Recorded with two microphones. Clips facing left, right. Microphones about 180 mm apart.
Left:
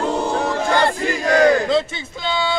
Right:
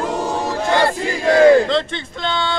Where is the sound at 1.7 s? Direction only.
5° left (ahead or behind).